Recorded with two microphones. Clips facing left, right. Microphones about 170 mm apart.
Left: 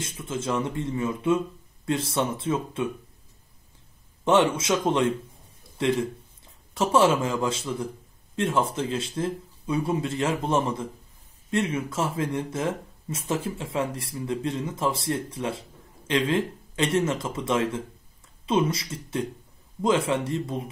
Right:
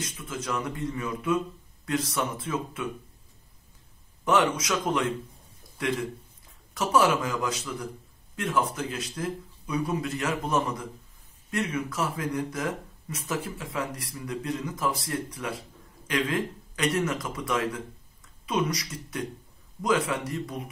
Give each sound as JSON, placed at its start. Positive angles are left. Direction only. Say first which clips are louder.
{"t": 0.2, "sound": "speech", "louder": "left 5 dB", "side_deg": 25}
{"t": 4.2, "sound": "speech", "louder": "left 3 dB", "side_deg": 25}